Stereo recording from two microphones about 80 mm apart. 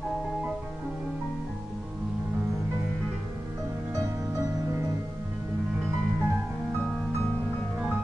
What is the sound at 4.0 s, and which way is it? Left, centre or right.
Music, right.